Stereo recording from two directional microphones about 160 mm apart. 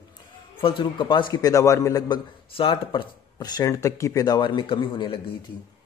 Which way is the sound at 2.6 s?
35° left (ahead or behind).